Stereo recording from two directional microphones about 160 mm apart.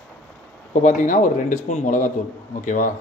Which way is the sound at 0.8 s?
55° left (ahead or behind).